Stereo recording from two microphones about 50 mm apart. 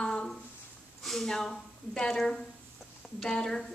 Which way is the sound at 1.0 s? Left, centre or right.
Centre.